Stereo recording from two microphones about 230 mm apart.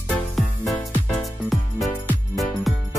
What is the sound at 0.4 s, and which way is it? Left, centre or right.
Music, centre.